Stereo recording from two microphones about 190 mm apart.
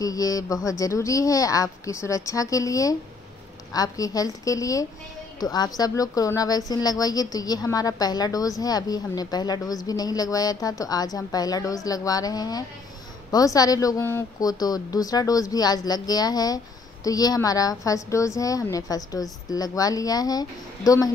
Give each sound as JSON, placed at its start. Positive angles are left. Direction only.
{"t": 0.0, "sound": "speech", "side_deg": 20}